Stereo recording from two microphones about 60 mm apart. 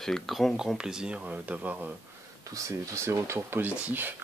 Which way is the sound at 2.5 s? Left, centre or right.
Right.